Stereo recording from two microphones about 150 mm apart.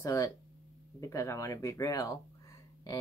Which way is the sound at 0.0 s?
20° left (ahead or behind).